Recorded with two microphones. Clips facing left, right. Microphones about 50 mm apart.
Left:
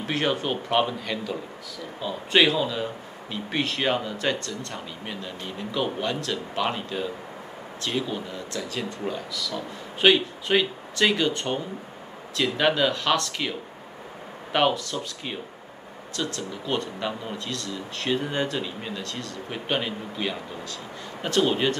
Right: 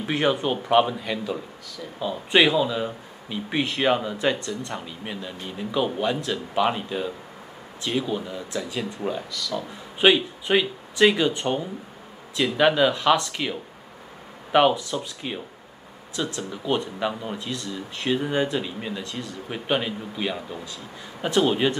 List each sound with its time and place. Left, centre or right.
0.0 s speech: centre
5.0 s speech: centre
14.5 s speech: centre
14.9 s speech: centre
16.2 s speech: centre
17.0 s speech: centre